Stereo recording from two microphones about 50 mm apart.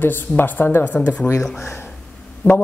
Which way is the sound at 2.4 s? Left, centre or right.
Left.